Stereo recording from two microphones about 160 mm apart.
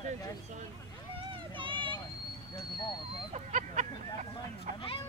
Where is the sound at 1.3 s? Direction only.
30° right (ahead or behind).